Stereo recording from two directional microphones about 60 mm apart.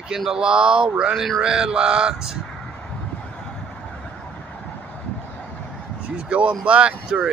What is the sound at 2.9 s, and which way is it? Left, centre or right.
Vehicle, centre.